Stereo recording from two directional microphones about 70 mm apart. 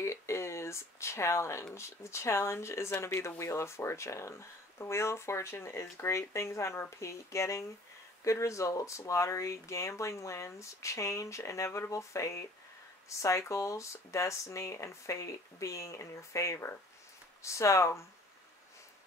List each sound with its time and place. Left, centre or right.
0.0 s speech: left